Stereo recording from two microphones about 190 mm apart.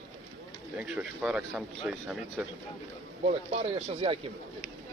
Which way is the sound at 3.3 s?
35° right (ahead or behind).